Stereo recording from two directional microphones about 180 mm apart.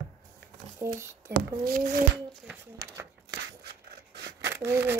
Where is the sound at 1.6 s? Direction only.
50° right (ahead or behind).